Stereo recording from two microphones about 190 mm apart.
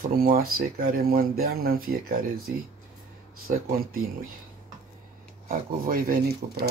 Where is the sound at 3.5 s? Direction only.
50° right (ahead or behind).